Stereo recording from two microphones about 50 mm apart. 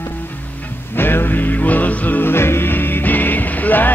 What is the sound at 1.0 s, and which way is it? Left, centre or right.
Music, left.